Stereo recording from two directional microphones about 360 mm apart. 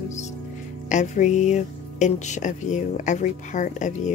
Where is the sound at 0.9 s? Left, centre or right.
Centre.